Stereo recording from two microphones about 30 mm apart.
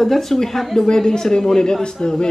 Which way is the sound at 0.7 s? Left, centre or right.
Centre.